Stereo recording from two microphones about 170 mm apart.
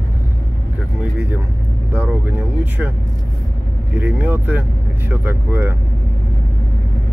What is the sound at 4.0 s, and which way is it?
Speech, 10° right (ahead or behind).